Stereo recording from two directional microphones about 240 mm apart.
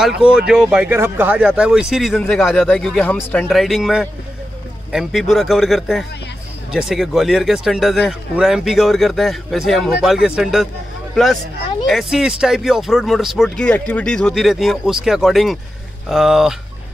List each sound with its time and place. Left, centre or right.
0.2 s speech: centre
11.8 s speech: centre